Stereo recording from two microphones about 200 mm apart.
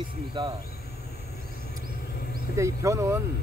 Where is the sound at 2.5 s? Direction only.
15° right (ahead or behind).